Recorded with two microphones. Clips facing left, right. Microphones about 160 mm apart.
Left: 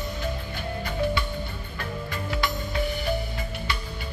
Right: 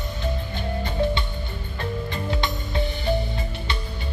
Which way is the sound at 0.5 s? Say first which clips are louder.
Right 3 dB; 25° right (ahead or behind).